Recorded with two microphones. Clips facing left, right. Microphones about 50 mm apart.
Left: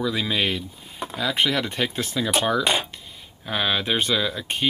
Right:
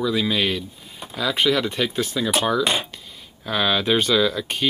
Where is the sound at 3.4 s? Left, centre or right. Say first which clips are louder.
Right 3 dB; left.